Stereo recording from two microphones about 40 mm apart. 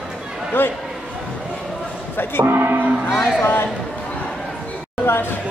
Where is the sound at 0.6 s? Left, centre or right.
Left.